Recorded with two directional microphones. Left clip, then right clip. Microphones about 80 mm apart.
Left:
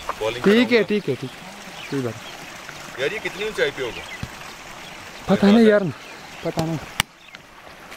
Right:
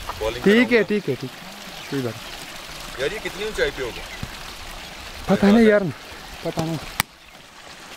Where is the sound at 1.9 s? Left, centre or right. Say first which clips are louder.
Even; right.